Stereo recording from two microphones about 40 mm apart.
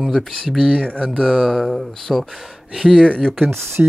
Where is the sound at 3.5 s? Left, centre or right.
Right.